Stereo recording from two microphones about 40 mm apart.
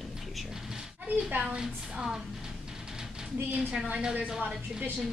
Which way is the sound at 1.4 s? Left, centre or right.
Right.